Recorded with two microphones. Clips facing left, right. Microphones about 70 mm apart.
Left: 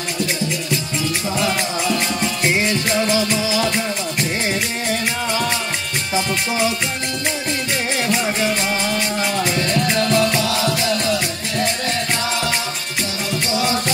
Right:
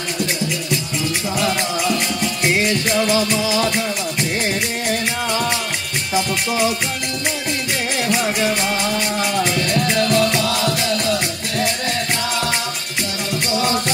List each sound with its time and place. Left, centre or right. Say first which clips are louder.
2.5 s music: right 3 dB; left
3.4 s music: right 1 dB; right
9.5 s music: even; left
10.4 s music: even; right
10.7 s music: even; left
13.6 s music: right 1 dB; right